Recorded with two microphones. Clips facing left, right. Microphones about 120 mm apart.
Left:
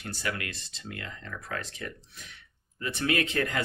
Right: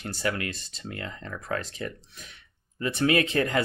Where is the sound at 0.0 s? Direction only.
30° right (ahead or behind).